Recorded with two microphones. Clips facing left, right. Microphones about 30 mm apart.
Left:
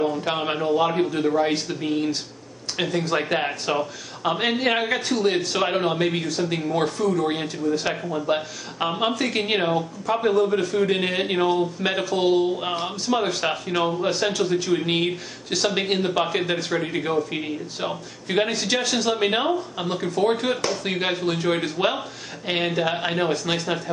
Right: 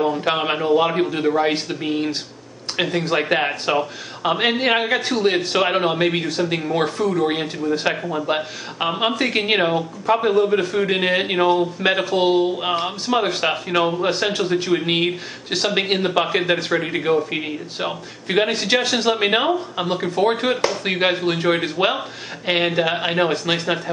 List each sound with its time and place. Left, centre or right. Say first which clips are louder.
0.0 s speech: right 4 dB; right